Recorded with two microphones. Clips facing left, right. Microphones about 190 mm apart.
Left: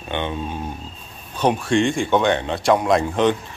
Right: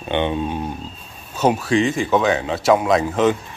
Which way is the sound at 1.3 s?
5° right (ahead or behind).